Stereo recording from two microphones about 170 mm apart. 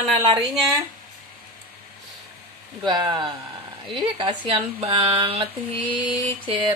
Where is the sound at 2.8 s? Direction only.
25° right (ahead or behind).